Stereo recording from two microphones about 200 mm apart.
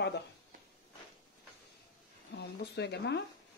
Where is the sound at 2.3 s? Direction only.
55° left (ahead or behind).